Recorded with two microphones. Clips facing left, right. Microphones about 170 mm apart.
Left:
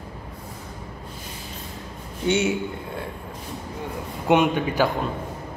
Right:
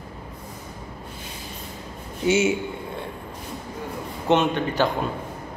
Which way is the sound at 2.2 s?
5° right (ahead or behind).